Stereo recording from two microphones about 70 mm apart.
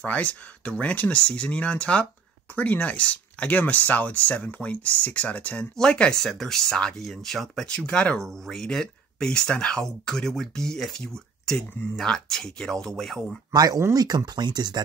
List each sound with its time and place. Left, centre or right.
0.0 s speech: centre
13.5 s speech: right